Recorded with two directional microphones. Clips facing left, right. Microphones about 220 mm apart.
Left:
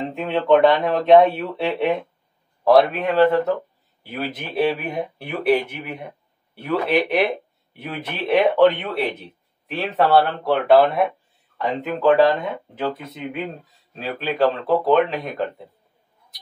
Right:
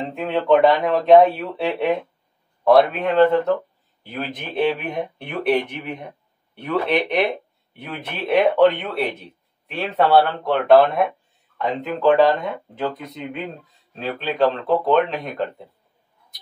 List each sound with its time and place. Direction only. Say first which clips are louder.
0.1 s speech: even; centre (ahead or behind)